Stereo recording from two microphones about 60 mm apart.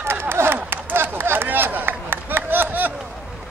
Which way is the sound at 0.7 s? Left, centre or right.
Right.